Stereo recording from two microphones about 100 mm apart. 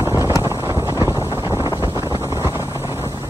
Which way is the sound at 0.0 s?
30° right (ahead or behind).